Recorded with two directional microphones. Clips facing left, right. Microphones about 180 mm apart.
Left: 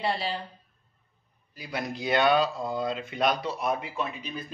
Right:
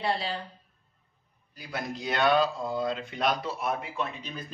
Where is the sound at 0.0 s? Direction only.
Centre (ahead or behind).